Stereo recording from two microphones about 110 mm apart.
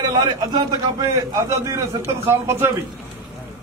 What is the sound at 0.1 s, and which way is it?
Speech, 35° right (ahead or behind).